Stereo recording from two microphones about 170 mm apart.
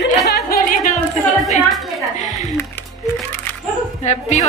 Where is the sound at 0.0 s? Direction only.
65° left (ahead or behind).